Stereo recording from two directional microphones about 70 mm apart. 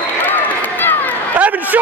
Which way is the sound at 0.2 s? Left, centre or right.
Left.